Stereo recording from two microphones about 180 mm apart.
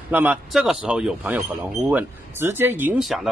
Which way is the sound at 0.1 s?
5° right (ahead or behind).